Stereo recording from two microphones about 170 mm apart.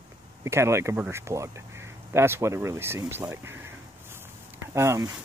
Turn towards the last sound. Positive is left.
turn(degrees=-15)  # may be behind; listen again after turning